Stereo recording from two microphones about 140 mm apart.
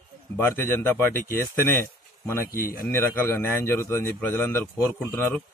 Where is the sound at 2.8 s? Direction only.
15° left (ahead or behind).